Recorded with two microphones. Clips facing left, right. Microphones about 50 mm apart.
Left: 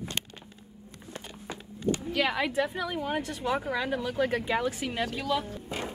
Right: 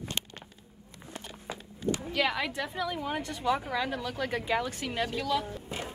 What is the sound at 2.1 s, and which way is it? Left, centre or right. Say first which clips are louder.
Speech: left 1 dB; centre.